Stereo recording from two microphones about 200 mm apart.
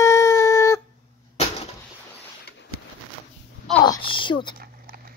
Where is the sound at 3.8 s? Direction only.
25° left (ahead or behind).